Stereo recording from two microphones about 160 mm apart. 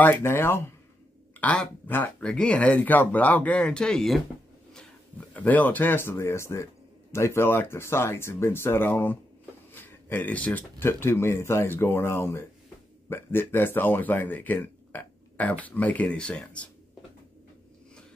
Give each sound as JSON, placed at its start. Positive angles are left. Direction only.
{"t": 0.0, "sound": "speech", "side_deg": 15}
{"t": 5.3, "sound": "speech", "side_deg": 10}